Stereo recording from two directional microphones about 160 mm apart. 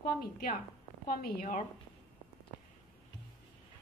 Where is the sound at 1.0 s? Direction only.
65° left (ahead or behind).